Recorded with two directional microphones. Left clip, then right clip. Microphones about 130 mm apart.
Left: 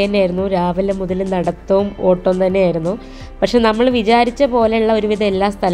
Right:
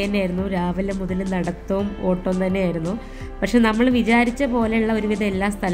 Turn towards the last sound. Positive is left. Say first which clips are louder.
# left 8 dB
turn(degrees=25)  # may be behind; listen again after turning